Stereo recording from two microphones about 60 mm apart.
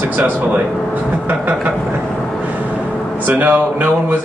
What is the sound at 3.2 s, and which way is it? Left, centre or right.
Speech, right.